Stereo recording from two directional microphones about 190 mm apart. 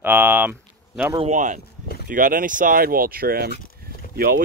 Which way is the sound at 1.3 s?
40° right (ahead or behind).